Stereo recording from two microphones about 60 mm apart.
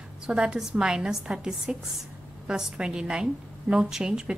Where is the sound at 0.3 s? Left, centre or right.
Centre.